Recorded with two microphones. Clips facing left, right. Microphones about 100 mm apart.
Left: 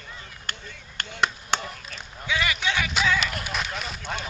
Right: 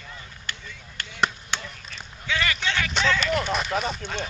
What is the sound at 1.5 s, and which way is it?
Chop, 45° left (ahead or behind).